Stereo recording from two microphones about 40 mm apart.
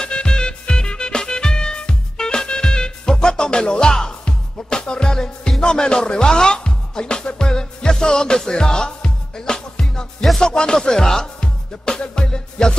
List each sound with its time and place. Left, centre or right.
0.0 s music: centre